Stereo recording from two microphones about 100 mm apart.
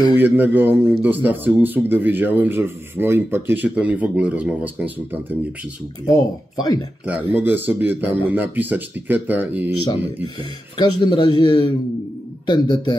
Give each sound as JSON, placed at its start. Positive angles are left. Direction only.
{"t": 0.1, "sound": "a man's voice", "side_deg": -20}
{"t": 6.0, "sound": "speech", "side_deg": 35}
{"t": 7.3, "sound": "a man's voice", "side_deg": -20}
{"t": 10.8, "sound": "speech", "side_deg": 50}